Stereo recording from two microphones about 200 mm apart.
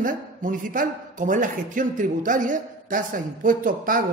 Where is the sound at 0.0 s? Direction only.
40° right (ahead or behind).